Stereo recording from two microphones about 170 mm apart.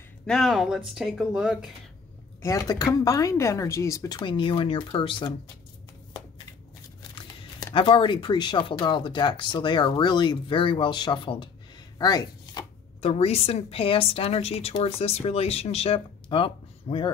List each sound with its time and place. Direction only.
0.3 s speech: centre (ahead or behind)
2.4 s speech: 20° left (ahead or behind)
7.0 s speech: 30° left (ahead or behind)